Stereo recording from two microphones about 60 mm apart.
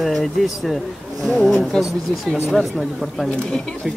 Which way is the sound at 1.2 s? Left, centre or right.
Centre.